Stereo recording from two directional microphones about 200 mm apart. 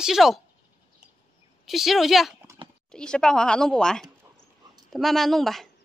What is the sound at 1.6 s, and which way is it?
A woman's voice, centre (ahead or behind).